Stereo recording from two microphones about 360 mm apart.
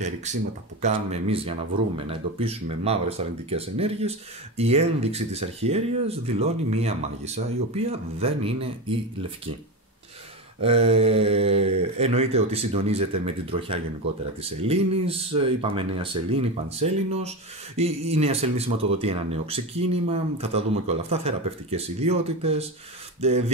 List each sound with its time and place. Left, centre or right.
0.0 s speech: centre
10.6 s speech: centre